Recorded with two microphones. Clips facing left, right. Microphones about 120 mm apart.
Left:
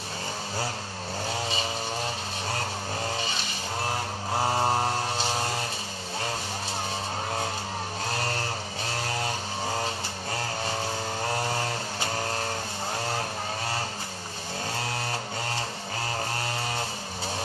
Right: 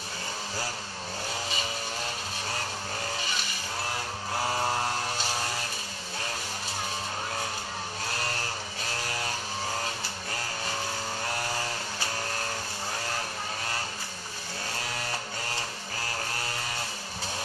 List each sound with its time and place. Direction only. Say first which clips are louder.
4.4 s vehicle: left 4 dB; 30° left (ahead or behind)